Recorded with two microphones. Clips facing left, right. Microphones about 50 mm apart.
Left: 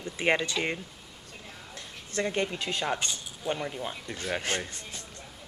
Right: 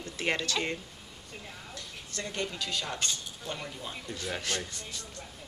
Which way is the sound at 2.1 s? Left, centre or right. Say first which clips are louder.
Left 6 dB; left.